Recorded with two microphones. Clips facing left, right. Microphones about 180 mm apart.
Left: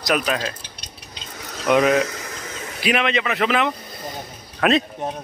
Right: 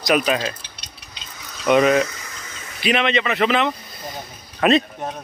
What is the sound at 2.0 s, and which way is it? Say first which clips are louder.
Boiling: left 5 dB; 60° left (ahead or behind).